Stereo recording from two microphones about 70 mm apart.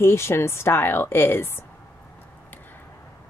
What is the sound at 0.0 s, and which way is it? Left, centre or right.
A woman's voice, left.